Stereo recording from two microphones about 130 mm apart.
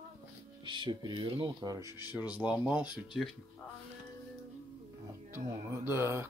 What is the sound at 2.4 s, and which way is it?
Speech, 10° right (ahead or behind).